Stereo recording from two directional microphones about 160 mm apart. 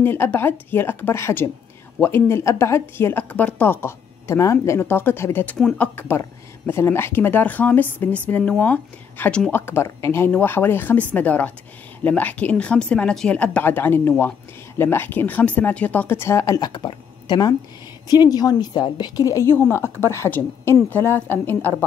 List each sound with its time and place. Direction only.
0.0 s a woman's voice: 15° left (ahead or behind)